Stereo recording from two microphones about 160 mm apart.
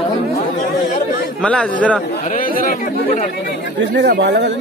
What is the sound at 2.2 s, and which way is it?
Chatter, 60° left (ahead or behind).